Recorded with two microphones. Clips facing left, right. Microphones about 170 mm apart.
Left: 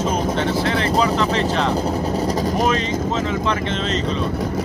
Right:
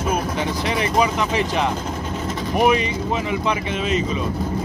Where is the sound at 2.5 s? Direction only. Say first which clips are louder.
Right 1 dB; 15° right (ahead or behind).